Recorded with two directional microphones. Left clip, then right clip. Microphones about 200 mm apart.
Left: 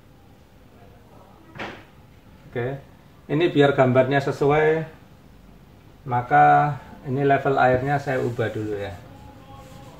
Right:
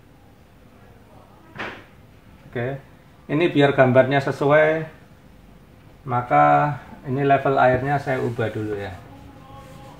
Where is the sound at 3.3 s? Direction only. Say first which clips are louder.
Even; 30° right (ahead or behind).